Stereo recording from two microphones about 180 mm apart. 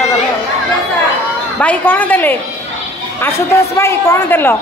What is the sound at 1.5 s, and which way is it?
Speech, 10° left (ahead or behind).